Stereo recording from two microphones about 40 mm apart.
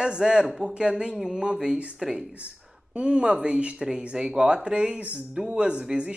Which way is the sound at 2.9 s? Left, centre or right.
Right.